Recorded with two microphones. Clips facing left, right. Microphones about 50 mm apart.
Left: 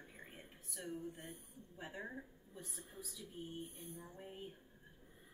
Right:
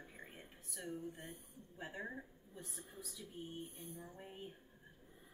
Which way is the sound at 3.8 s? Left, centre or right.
Left.